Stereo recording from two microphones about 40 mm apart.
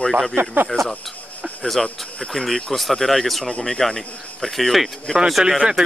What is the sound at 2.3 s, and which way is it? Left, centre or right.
Speech, centre.